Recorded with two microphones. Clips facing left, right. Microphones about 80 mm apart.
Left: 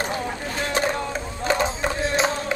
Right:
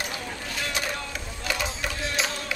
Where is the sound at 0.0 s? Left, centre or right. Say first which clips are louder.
Left 7 dB; left.